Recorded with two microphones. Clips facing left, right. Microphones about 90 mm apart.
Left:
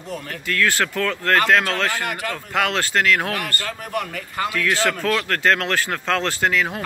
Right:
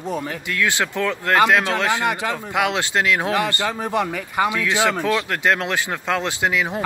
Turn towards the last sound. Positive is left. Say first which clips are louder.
# even
turn(degrees=-15)  # may be behind; listen again after turning